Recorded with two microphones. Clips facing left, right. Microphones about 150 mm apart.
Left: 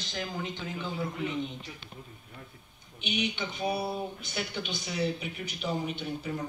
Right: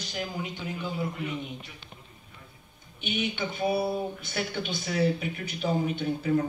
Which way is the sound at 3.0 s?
55° right (ahead or behind).